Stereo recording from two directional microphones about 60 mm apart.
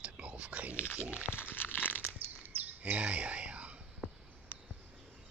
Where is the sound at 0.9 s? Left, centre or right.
Right.